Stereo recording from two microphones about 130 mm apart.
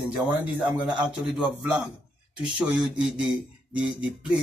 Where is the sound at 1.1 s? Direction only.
5° right (ahead or behind).